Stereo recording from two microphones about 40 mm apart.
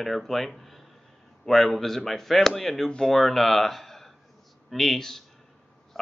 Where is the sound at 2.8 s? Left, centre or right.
Centre.